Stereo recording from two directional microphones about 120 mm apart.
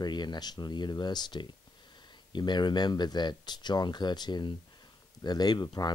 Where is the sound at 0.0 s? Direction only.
35° left (ahead or behind).